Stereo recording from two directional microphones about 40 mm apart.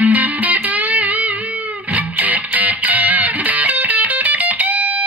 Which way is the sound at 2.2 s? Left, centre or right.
Right.